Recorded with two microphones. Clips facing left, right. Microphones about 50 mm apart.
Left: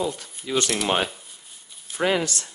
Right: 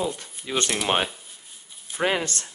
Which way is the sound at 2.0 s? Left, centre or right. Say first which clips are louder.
Left 2 dB; right.